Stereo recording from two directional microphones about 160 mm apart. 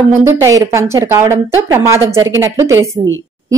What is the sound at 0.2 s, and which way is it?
A woman's voice, 15° right (ahead or behind).